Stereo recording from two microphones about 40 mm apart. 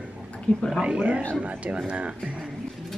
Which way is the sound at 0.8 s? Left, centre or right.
Right.